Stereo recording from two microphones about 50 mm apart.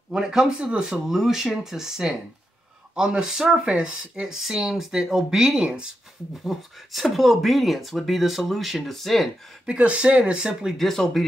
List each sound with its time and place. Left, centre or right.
0.1 s speech: centre
6.4 s speech: centre
9.7 s speech: right
10.8 s speech: centre